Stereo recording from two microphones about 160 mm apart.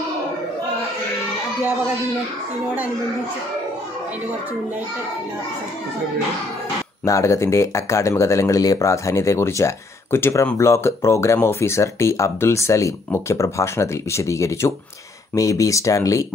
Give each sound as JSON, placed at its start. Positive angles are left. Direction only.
{"t": 7.1, "sound": "speech", "side_deg": 20}